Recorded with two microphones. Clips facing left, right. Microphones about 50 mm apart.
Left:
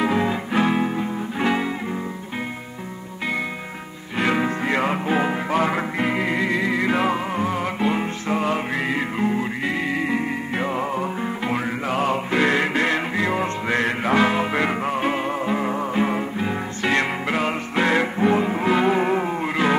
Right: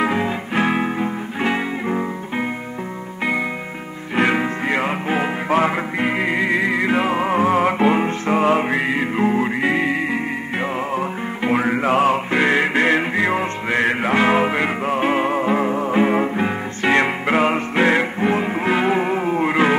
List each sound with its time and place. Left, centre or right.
0.0 s music: centre
0.6 s music: right
4.2 s music: right
12.1 s music: right
15.9 s music: right
18.9 s music: centre
19.4 s a sound: right